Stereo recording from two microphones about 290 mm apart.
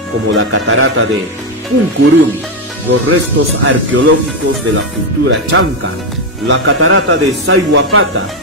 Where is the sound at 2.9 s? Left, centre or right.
Right.